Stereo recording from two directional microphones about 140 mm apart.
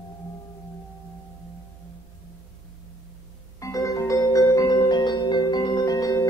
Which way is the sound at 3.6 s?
25° left (ahead or behind).